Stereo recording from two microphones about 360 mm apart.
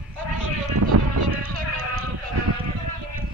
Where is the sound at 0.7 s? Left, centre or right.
Right.